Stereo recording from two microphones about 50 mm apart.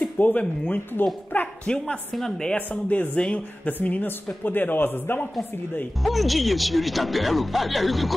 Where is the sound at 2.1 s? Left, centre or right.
Centre.